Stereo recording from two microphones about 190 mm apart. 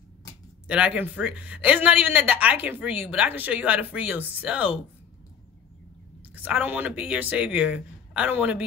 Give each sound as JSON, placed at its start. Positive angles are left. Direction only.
{"t": 0.7, "sound": "speech", "side_deg": -5}
{"t": 6.3, "sound": "speech", "side_deg": -10}